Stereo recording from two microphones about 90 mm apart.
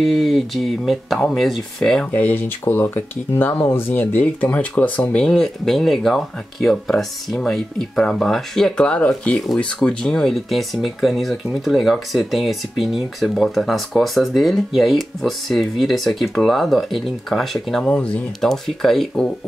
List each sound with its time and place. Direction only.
0.0 s speech: centre (ahead or behind)
2.1 s speech: 20° left (ahead or behind); by 19.2 s 5° left (ahead or behind)